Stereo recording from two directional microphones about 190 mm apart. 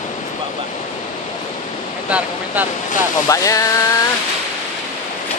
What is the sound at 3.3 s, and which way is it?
Speech, 15° left (ahead or behind).